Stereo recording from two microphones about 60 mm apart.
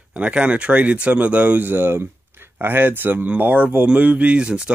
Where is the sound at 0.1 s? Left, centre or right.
Right.